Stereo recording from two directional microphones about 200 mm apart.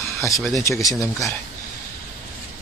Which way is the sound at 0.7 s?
15° left (ahead or behind).